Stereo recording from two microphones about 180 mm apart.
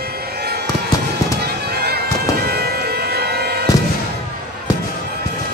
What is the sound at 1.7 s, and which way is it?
Bagpipes, 60° right (ahead or behind).